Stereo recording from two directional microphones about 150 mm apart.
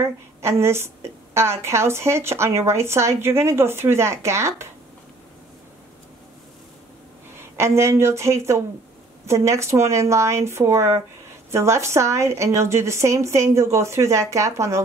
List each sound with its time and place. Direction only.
0.0 s a woman's voice: 20° right (ahead or behind)
7.3 s a woman's voice: 15° right (ahead or behind)